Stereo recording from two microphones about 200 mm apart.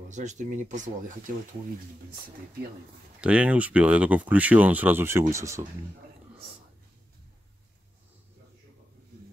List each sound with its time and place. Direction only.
0.1 s speech: 35° right (ahead or behind)
3.2 s speech: 5° right (ahead or behind)